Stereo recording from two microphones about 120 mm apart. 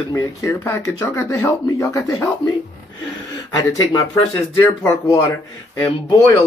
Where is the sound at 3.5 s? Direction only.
35° left (ahead or behind).